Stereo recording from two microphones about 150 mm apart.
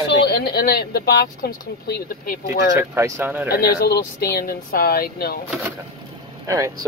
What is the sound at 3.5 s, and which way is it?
Speech, 90° left.